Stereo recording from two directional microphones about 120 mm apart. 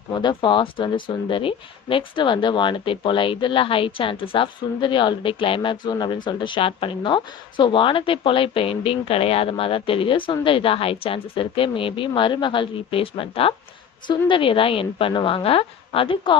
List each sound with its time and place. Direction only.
0.1 s speech: 40° left (ahead or behind)